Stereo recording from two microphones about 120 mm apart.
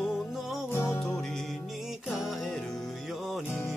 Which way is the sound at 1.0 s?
5° left (ahead or behind).